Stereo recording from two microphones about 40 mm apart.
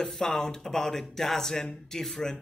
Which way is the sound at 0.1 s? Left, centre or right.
Centre.